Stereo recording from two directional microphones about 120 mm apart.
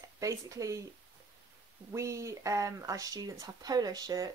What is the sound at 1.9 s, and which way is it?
Speech, 25° right (ahead or behind).